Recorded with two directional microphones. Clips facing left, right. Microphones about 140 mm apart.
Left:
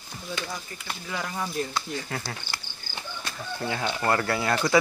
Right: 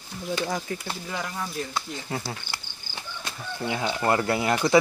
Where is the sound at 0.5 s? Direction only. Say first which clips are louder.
Right 8 dB; 75° right (ahead or behind).